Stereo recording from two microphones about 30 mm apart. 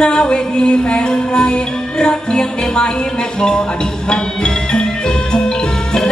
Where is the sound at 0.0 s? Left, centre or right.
Left.